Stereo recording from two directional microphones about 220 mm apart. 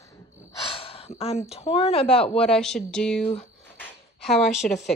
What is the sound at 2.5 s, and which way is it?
Speech, centre (ahead or behind).